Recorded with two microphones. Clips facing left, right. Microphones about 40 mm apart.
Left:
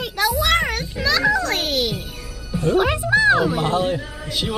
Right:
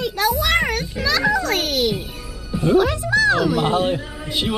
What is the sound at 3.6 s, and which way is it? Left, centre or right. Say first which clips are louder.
Speech: right 1 dB; centre.